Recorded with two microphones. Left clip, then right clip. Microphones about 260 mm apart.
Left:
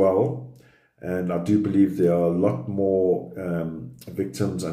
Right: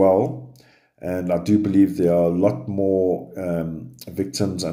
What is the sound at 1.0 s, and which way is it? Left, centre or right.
Speech, right.